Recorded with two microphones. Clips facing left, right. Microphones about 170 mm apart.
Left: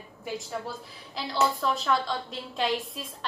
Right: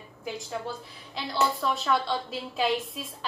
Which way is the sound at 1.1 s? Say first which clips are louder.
Left 1 dB; centre (ahead or behind).